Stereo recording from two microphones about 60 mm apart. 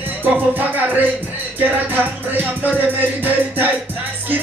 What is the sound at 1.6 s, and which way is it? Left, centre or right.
Music, right.